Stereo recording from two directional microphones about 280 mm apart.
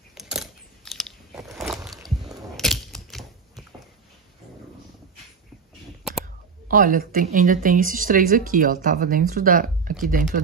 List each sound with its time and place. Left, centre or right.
0.1 s biting: centre
2.0 s a sound: centre
6.7 s speech: right